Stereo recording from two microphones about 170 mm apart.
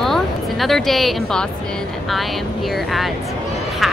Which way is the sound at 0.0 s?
Centre (ahead or behind).